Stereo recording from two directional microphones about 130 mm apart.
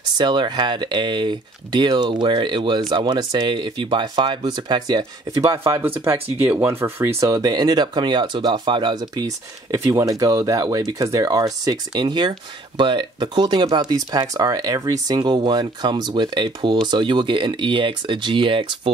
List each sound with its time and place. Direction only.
0.2 s speech: 35° right (ahead or behind)
5.6 s speech: 20° right (ahead or behind); by 18.7 s 40° right (ahead or behind)